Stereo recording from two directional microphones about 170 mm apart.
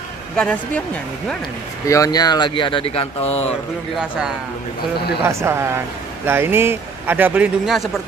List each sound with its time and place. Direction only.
0.4 s speech: 5° left (ahead or behind)
1.9 s speech: 20° left (ahead or behind); by 3.5 s 40° left (ahead or behind)
4.0 s a man's voice: 5° right (ahead or behind)